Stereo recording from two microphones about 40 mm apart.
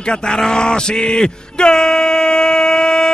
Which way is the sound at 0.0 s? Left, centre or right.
Left.